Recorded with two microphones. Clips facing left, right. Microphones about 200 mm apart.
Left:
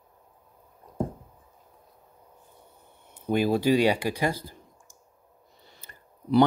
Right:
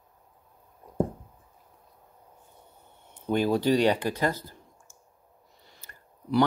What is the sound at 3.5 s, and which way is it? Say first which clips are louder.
Speech: left 1 dB; 10° left (ahead or behind).